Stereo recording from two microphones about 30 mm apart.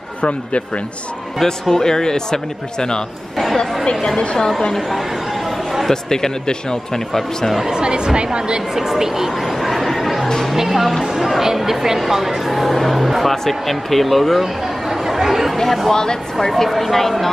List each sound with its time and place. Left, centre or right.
1.4 s speech: centre
4.4 s speech: left
5.9 s speech: centre
7.7 s a woman's voice: right
8.7 s speech: centre
9.6 s chatter: centre
10.5 s speech: centre
15.0 s chatter: centre
15.5 s speech: centre
15.9 s speech: left
16.3 s speech: centre